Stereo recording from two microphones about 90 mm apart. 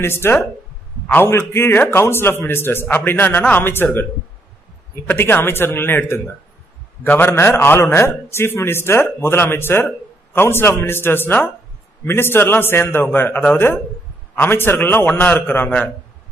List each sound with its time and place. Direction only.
0.0 s a man's voice: 25° left (ahead or behind)
5.0 s a man's voice: 25° left (ahead or behind)